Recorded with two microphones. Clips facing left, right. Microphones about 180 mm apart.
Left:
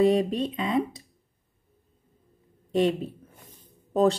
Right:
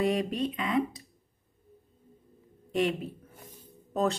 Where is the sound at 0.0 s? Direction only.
25° left (ahead or behind).